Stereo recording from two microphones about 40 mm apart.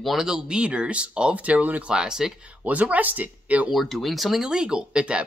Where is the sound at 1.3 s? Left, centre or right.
Right.